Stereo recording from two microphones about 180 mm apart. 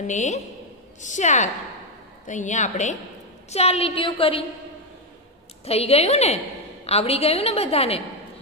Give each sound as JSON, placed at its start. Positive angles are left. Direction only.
{"t": 0.0, "sound": "a woman's voice", "side_deg": 40}
{"t": 5.7, "sound": "a woman's voice", "side_deg": 35}